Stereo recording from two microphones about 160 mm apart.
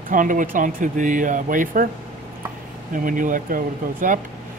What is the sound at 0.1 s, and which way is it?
Speech, 55° right (ahead or behind).